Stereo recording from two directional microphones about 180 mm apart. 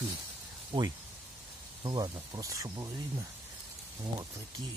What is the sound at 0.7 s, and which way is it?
Speech, 20° right (ahead or behind).